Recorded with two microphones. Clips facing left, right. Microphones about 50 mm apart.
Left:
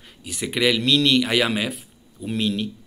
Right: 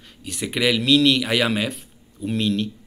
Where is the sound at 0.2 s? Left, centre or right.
Centre.